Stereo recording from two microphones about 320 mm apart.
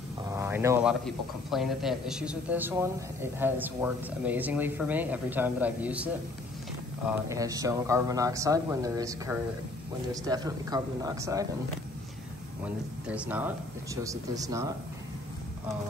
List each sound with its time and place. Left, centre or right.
0.2 s a man's voice: centre
7.1 s speech: centre
12.6 s a man's voice: centre